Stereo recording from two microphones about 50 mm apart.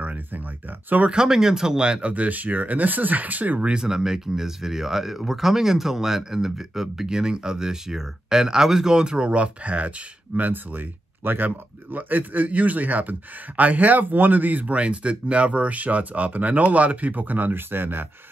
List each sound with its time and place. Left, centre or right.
0.0 s a sound: right
1.0 s speech: centre
3.8 s speech: centre; by 18.0 s right